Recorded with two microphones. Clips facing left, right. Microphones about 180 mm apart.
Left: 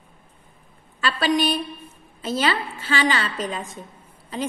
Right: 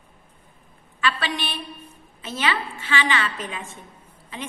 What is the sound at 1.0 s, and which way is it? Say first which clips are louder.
A woman's voice: left 5 dB; 40° left (ahead or behind).